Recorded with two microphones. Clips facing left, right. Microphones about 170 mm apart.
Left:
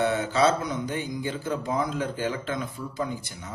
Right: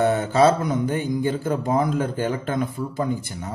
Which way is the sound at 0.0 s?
50° right (ahead or behind).